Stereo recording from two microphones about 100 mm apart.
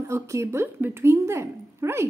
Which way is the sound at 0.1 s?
30° right (ahead or behind).